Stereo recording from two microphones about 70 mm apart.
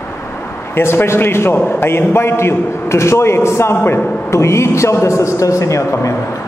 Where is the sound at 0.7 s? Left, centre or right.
Left.